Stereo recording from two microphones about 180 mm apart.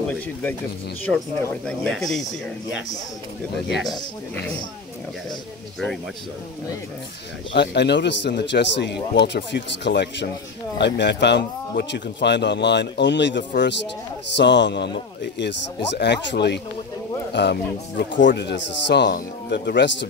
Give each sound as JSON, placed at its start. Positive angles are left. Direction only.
{"t": 1.0, "sound": "speech", "side_deg": 5}
{"t": 7.5, "sound": "speech", "side_deg": 70}
{"t": 19.1, "sound": "speech", "side_deg": 60}